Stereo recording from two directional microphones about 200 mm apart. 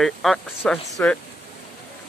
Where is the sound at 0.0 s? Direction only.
Centre (ahead or behind).